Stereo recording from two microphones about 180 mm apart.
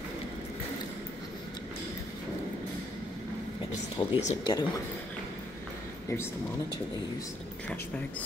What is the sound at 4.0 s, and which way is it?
Speech, 25° left (ahead or behind).